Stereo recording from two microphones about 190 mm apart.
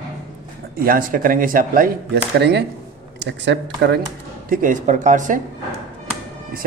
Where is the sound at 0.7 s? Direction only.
50° right (ahead or behind).